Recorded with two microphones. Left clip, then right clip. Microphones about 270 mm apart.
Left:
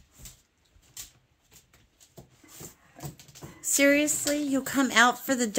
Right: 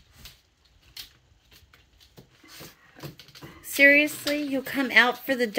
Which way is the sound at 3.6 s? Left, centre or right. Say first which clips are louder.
Right 5 dB; left.